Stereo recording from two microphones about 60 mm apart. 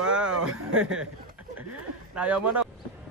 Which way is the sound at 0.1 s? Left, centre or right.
Centre.